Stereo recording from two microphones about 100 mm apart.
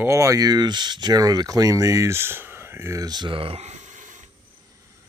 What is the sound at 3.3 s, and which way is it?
Speech, 65° right (ahead or behind).